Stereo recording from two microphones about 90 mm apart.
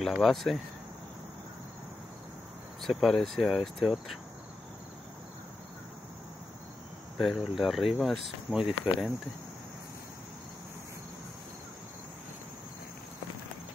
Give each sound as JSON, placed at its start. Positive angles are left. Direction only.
{"t": 0.0, "sound": "speech", "side_deg": 0}
{"t": 2.8, "sound": "speech", "side_deg": 0}
{"t": 7.3, "sound": "speech", "side_deg": 0}